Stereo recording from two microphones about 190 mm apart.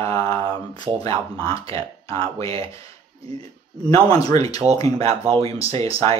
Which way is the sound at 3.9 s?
20° left (ahead or behind).